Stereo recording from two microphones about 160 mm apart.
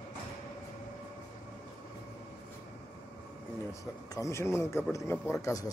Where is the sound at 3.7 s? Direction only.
20° left (ahead or behind).